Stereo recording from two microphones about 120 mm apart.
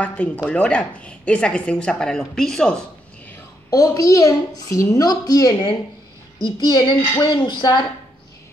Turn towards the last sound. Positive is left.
turn(degrees=35)  # may be behind; listen again after turning